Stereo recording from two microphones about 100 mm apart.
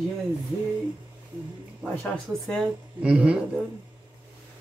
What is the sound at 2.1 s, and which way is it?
Speech, 5° left (ahead or behind).